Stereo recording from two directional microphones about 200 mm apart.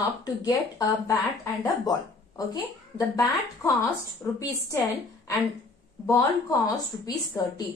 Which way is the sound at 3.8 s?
10° left (ahead or behind).